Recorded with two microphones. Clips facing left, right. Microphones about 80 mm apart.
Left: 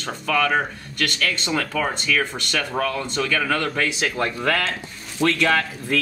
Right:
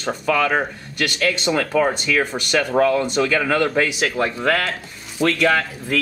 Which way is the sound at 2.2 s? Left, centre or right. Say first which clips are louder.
Right 5 dB; right.